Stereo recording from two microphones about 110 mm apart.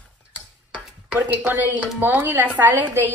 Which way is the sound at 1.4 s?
10° right (ahead or behind).